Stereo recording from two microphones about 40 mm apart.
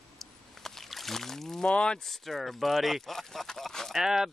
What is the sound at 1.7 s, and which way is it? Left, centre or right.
Speech, left.